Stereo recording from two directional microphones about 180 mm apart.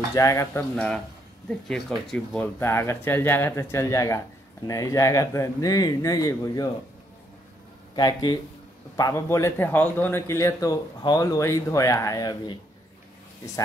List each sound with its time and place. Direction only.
0.1 s a man's voice: 15° left (ahead or behind)
0.7 s a man's voice: 5° left (ahead or behind); by 6.7 s 20° left (ahead or behind)
7.9 s a man's voice: 25° left (ahead or behind)